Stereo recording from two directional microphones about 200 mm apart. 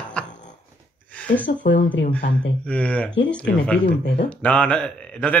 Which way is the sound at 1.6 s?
60° left (ahead or behind).